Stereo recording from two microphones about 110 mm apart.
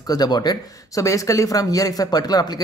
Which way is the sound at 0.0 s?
35° left (ahead or behind).